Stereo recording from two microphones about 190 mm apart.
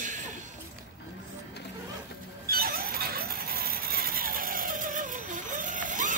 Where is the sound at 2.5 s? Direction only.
50° right (ahead or behind).